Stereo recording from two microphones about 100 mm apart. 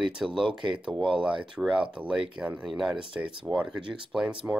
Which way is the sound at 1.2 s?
5° right (ahead or behind).